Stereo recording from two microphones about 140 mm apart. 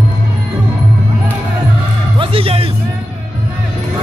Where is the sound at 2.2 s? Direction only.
40° right (ahead or behind).